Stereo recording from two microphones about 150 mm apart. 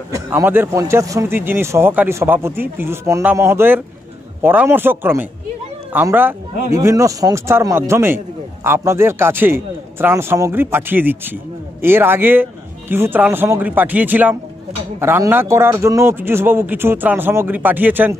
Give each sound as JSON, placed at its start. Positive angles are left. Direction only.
{"t": 0.1, "sound": "speech", "side_deg": -15}